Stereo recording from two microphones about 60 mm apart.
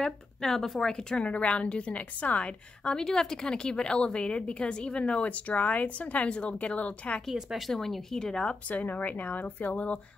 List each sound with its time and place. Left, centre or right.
0.0 s a woman's voice: centre
7.3 s speech: centre
7.7 s a woman's voice: centre
8.6 s speech: left